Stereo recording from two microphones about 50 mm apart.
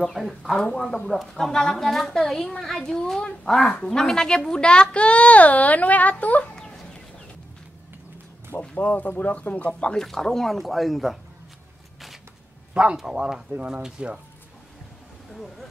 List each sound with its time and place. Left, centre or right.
0.0 s a child's voice: centre; by 6.5 s left
6.5 s chicken: centre
8.5 s a child's voice: left
9.9 s speech: centre
12.9 s speech: centre